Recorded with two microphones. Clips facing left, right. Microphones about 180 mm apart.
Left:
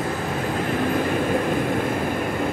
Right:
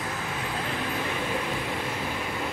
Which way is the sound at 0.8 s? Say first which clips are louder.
Left 11 dB; 50° left (ahead or behind).